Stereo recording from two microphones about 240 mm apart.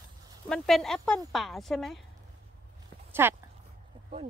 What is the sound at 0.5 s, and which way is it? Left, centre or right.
A woman's voice, centre.